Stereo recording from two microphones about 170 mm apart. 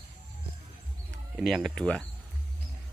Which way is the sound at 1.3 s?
Centre (ahead or behind).